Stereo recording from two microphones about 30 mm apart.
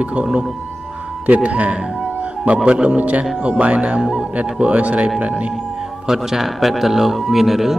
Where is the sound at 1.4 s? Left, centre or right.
Right.